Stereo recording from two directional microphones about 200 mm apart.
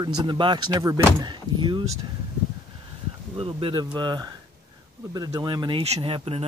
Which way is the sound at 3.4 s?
25° right (ahead or behind).